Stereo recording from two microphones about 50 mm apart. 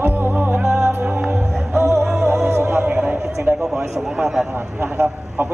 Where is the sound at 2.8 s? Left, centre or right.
Right.